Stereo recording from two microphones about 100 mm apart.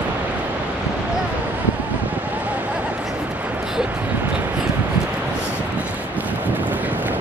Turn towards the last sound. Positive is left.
turn(degrees=-15)  # may be behind; listen again after turning